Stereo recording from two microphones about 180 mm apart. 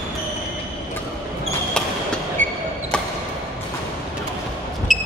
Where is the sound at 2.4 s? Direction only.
10° left (ahead or behind).